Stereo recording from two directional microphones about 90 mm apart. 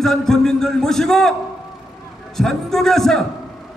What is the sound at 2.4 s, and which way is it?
Speech, 5° left (ahead or behind).